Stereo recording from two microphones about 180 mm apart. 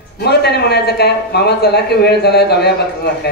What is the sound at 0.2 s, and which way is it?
Speech, 65° left (ahead or behind).